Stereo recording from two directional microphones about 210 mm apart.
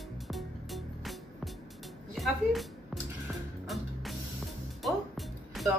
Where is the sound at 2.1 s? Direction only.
Centre (ahead or behind).